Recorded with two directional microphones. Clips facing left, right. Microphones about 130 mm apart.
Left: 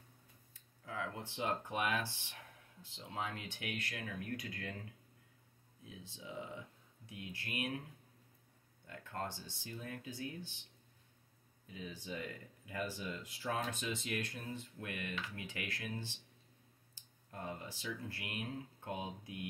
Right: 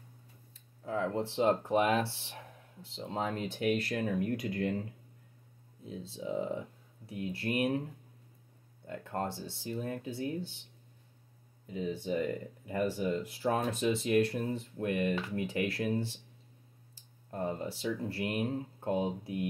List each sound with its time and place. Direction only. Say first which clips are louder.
0.8 s speech: right 11 dB; 35° right (ahead or behind)
8.8 s speech: right 8 dB; 30° right (ahead or behind)
11.6 s speech: right 12 dB; 30° right (ahead or behind)
17.3 s speech: right 10 dB; 30° right (ahead or behind)